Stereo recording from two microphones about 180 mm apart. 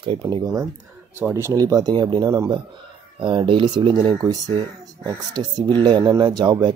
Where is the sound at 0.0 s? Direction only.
30° right (ahead or behind).